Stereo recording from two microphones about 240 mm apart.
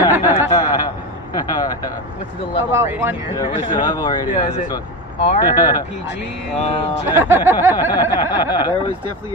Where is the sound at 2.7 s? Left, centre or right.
Centre.